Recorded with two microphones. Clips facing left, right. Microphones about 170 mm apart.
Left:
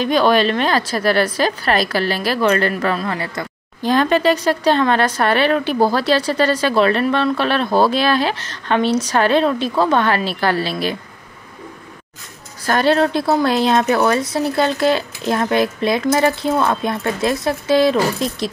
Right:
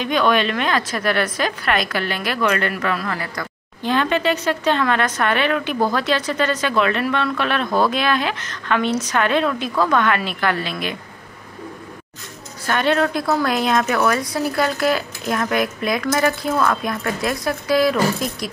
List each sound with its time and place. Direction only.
0.0 s speech: 35° left (ahead or behind)
3.8 s speech: 40° left (ahead or behind)
12.6 s a woman's voice: 35° left (ahead or behind)